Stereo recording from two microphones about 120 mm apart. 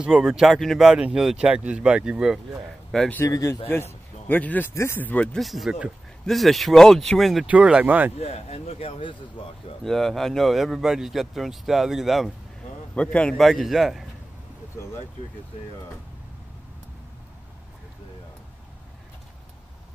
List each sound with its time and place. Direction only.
0.0 s speech: 5° right (ahead or behind)
3.3 s speech: 30° left (ahead or behind)
3.6 s speech: 20° left (ahead or behind)
5.4 s speech: centre (ahead or behind)
7.4 s speech: 10° right (ahead or behind)
8.2 s speech: 60° left (ahead or behind)
9.8 s speech: 5° left (ahead or behind)
12.9 s speech: 10° left (ahead or behind)